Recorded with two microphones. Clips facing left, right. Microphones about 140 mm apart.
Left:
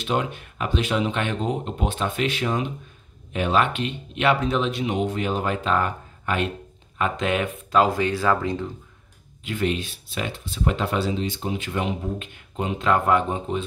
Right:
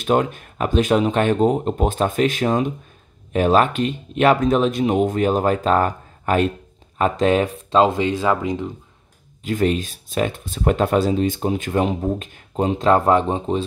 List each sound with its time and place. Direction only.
0.0 s speech: 50° right (ahead or behind); by 8.7 s 15° right (ahead or behind)
9.4 s speech: 40° right (ahead or behind)